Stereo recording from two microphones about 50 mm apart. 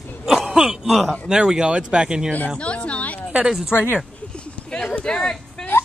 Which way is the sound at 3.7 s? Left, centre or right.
Left.